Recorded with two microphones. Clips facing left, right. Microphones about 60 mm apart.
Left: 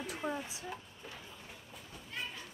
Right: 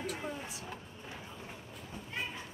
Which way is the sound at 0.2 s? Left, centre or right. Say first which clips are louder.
Left 3 dB; centre.